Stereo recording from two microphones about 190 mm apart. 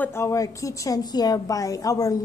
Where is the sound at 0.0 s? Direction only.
15° left (ahead or behind).